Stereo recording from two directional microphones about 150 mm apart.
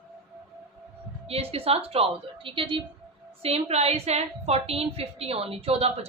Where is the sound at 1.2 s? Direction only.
40° right (ahead or behind).